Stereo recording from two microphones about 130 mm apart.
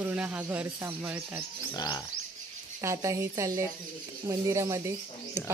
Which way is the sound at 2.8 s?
25° right (ahead or behind).